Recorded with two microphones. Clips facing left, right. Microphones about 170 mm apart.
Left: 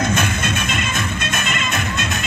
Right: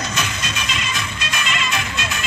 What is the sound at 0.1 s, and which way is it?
Music, 50° left (ahead or behind).